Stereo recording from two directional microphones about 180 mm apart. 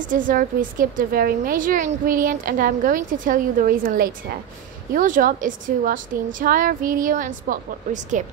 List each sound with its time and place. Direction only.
0.1 s a woman's voice: 50° right (ahead or behind)